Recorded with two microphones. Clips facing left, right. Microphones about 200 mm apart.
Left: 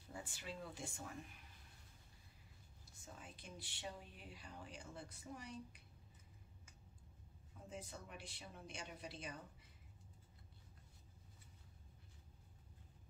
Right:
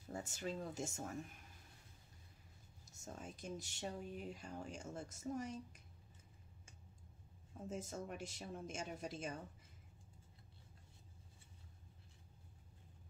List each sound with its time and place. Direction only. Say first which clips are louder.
0.1 s speech: right 7 dB; 45° right (ahead or behind)
2.8 s speech: right 6 dB; 45° right (ahead or behind)
7.5 s speech: right 7 dB; 45° right (ahead or behind)